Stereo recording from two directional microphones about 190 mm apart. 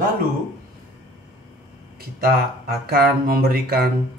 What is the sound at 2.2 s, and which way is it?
Speech, 50° right (ahead or behind).